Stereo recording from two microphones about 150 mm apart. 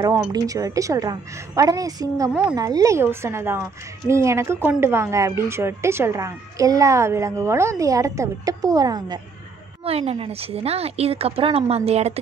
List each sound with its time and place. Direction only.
0.3 s speech: 25° right (ahead or behind)
9.8 s a woman's voice: 40° right (ahead or behind)